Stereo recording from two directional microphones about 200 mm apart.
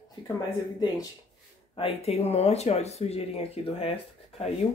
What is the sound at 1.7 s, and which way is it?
Speech, 30° left (ahead or behind).